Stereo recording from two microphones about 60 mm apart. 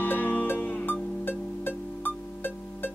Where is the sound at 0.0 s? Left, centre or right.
Left.